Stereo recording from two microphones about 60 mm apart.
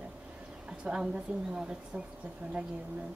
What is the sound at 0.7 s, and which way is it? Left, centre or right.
Speech, centre.